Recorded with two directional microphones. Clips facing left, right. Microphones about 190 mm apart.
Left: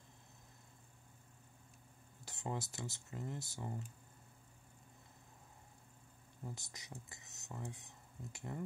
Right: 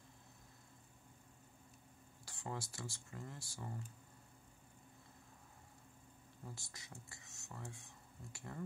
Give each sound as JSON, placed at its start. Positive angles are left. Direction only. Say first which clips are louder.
{"t": 2.2, "sound": "speech", "louder": "left 3 dB", "side_deg": 20}
{"t": 6.4, "sound": "speech", "louder": "left 4 dB", "side_deg": 20}